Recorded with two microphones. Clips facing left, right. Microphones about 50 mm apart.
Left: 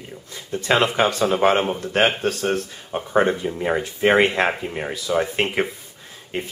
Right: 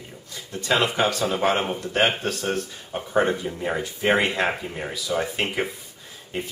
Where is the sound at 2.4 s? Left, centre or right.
Centre.